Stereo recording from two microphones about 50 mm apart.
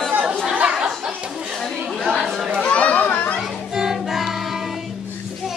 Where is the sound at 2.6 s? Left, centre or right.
Left.